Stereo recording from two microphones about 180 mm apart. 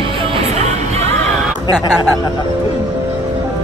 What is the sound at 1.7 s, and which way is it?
Speech, 20° right (ahead or behind).